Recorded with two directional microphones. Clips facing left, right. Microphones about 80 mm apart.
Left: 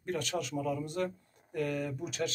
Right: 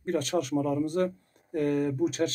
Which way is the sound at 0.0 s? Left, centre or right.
Right.